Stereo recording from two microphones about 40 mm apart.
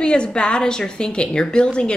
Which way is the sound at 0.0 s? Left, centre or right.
Left.